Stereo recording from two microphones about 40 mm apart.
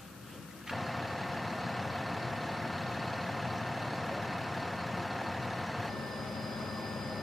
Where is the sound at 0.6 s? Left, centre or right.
Centre.